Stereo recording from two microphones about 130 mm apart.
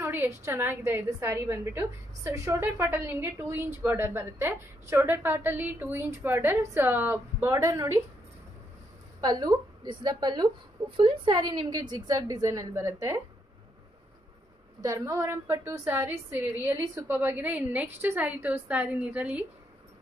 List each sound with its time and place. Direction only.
0.0 s a woman's voice: 15° right (ahead or behind)
9.2 s a woman's voice: 30° right (ahead or behind)
14.8 s a woman's voice: 25° right (ahead or behind)